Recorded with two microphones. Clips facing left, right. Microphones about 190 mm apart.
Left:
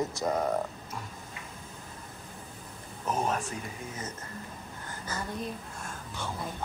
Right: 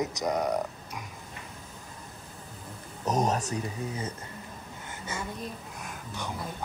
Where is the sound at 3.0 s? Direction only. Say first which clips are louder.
Right 3 dB; 40° right (ahead or behind).